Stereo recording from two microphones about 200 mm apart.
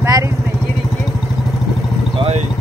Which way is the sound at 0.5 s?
Centre (ahead or behind).